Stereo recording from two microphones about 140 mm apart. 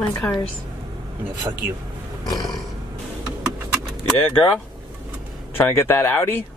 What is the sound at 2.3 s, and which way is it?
Roar, 25° left (ahead or behind).